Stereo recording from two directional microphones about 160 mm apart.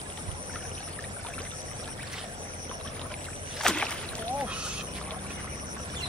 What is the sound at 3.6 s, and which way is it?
Rowboat, 5° left (ahead or behind).